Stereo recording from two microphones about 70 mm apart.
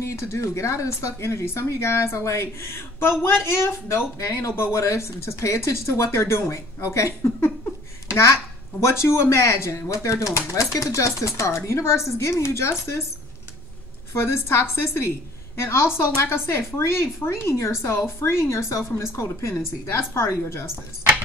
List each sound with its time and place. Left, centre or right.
0.0 s a child's voice: left
14.1 s speech: left